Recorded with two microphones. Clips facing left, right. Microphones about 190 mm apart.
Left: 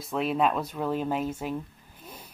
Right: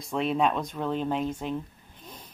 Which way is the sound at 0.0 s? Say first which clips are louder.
Even; centre (ahead or behind).